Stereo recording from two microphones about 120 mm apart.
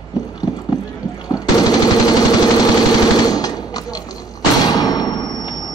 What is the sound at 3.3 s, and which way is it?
Gunshot, 30° left (ahead or behind).